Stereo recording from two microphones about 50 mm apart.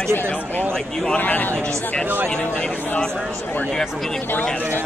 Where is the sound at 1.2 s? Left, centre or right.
Left.